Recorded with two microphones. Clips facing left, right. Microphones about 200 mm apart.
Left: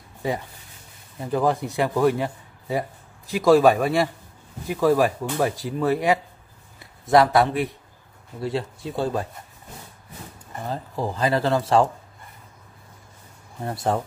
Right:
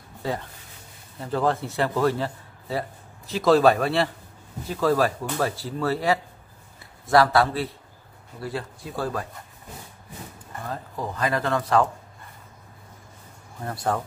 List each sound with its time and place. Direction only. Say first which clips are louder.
0.2 s a man's voice: left 2 dB; 15° left (ahead or behind)
10.5 s speech: left 4 dB; 25° left (ahead or behind)
13.9 s speech: left 2 dB; 25° left (ahead or behind)